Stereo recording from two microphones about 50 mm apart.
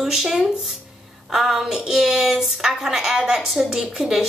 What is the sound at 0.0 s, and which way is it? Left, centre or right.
A woman's voice, centre.